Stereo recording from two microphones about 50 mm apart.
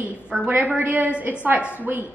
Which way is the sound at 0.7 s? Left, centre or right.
Right.